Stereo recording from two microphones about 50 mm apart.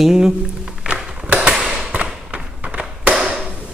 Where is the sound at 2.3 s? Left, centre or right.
Right.